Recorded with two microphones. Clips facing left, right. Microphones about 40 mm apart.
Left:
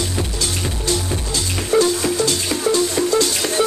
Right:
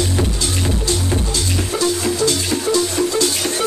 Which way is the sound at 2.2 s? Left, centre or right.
Left.